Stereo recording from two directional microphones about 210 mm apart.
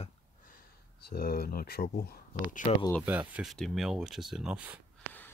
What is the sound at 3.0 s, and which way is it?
Speech, 5° right (ahead or behind).